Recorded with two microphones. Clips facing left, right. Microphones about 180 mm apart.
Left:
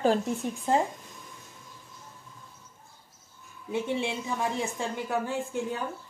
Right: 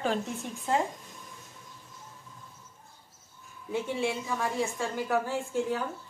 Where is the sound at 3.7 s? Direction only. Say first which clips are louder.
Left 1 dB; 20° left (ahead or behind).